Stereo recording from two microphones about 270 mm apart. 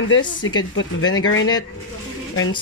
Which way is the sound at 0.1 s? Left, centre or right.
Left.